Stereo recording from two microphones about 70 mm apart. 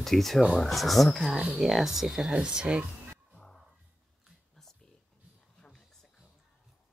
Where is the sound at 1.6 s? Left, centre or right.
Centre.